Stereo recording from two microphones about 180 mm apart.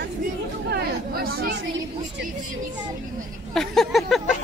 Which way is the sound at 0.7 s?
60° right (ahead or behind).